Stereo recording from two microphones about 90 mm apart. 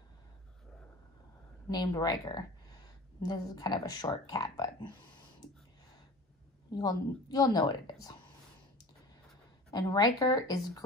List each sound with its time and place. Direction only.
1.7 s speech: 50° left (ahead or behind)
6.7 s a woman's voice: 50° left (ahead or behind)
9.7 s a woman's voice: 50° left (ahead or behind)